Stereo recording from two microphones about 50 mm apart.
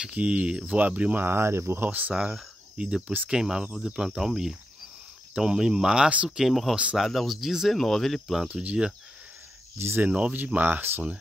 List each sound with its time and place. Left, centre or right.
0.1 s speech: right
1.2 s speech: right
1.9 s speech: right
2.1 s speech: centre
6.0 s speech: right
6.3 s speech: centre
8.5 s speech: centre
10.0 s speech: right
10.3 s speech: right